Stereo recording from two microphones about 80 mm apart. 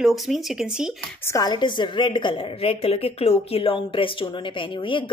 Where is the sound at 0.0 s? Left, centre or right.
Centre.